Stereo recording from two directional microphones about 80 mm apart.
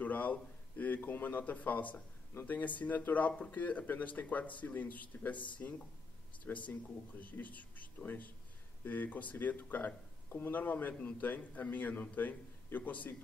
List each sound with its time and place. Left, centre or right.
0.0 s a man's voice: centre